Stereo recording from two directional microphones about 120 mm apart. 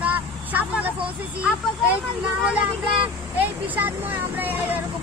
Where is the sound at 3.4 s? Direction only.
15° right (ahead or behind).